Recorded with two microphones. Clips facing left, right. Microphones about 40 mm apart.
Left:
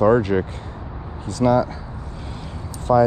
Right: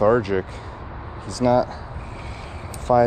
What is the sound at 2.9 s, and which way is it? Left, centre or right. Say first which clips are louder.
Speech: left 1 dB; left.